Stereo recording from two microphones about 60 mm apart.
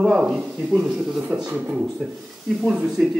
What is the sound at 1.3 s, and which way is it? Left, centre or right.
Speech, right.